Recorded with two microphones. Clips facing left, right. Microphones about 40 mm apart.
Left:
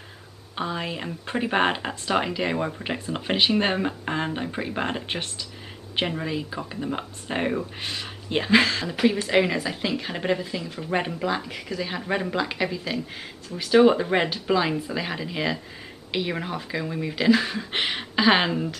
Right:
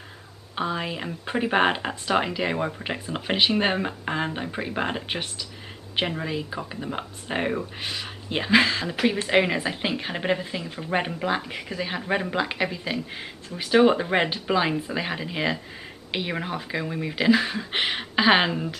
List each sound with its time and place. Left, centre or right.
0.6 s speech: centre
12.0 s speech: centre